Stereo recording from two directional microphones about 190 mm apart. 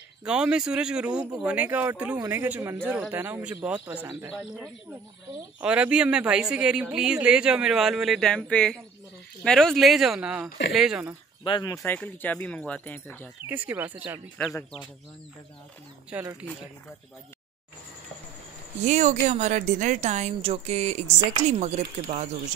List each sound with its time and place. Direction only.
0.2 s a man's voice: 5° right (ahead or behind)
5.6 s a man's voice: 5° right (ahead or behind)
11.4 s speech: 20° left (ahead or behind)
13.5 s speech: 10° right (ahead or behind)
16.1 s speech: 10° right (ahead or behind)
18.8 s a woman's voice: 40° right (ahead or behind)